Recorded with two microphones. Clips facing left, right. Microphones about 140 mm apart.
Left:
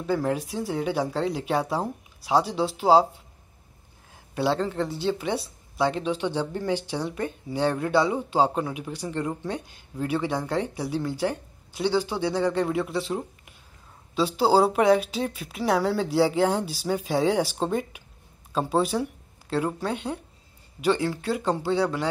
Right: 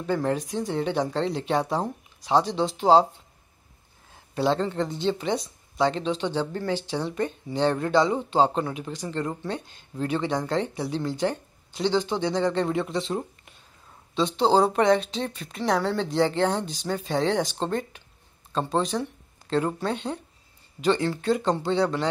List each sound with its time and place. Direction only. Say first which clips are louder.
0.0 s speech: even; 5° left (ahead or behind)
4.4 s speech: right 1 dB; 10° left (ahead or behind)